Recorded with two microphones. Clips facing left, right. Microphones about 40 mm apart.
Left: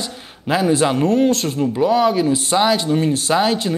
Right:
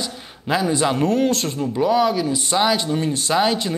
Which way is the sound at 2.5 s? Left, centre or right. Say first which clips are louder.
Left 2 dB; centre.